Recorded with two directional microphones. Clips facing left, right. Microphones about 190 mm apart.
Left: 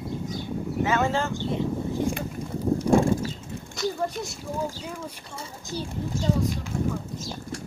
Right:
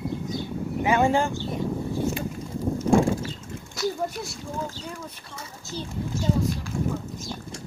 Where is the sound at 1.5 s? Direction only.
15° left (ahead or behind).